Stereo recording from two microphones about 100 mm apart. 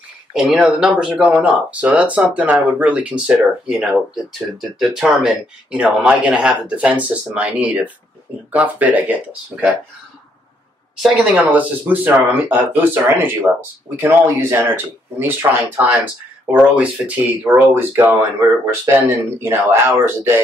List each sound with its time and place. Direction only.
0.3 s speech: 5° right (ahead or behind)
11.0 s speech: 15° right (ahead or behind)